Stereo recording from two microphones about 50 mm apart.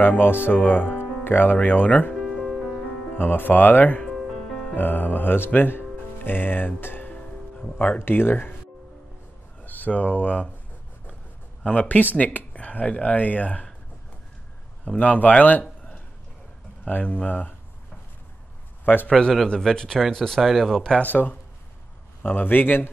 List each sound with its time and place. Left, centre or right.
0.0 s speech: left
2.3 s music: centre
3.2 s speech: left
4.1 s music: centre
4.7 s speech: left
9.6 s speech: left
11.6 s speech: left
12.0 s speech: left
14.9 s speech: left
16.9 s speech: left
19.0 s speech: centre
21.0 s speech: left